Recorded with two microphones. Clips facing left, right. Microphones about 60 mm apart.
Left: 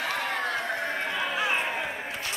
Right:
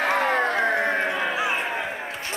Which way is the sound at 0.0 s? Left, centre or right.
Right.